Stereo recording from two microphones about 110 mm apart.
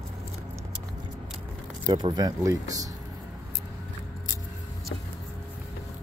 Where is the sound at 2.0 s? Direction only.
40° right (ahead or behind).